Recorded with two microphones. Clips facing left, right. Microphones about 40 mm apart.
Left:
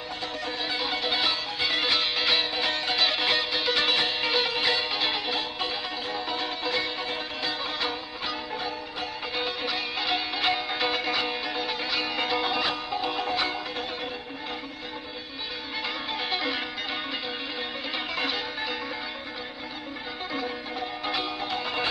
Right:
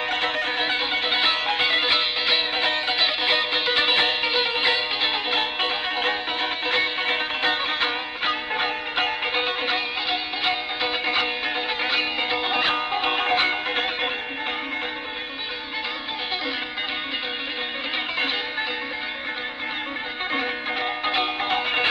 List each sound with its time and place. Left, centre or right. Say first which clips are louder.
0.1 s music: right 6 dB; right
1.8 s music: right 3 dB; right
3.3 s music: right 4 dB; right
5.3 s music: right 6 dB; right
10.0 s music: right 2 dB; centre
11.1 s music: right 4 dB; right
12.2 s music: right 3 dB; right
20.3 s music: right 6 dB; right